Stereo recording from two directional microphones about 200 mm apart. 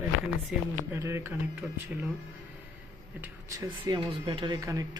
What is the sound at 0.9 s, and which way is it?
Speech, 15° right (ahead or behind).